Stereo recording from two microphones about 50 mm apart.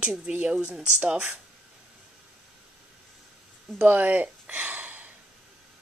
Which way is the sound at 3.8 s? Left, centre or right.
Right.